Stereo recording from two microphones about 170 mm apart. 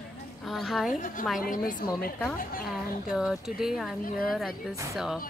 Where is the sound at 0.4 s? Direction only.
Centre (ahead or behind).